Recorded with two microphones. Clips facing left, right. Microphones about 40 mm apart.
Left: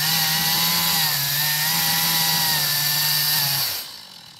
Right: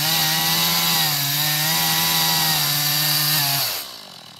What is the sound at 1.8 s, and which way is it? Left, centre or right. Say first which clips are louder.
Chainsaw: right 2 dB; right.